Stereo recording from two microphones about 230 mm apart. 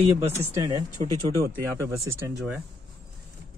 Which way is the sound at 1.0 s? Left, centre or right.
Right.